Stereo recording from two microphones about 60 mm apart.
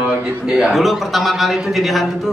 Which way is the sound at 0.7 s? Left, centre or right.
Centre.